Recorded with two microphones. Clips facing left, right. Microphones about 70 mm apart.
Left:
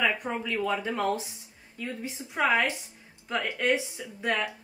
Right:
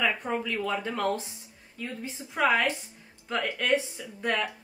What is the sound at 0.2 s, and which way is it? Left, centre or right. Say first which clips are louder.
Speech: even; centre.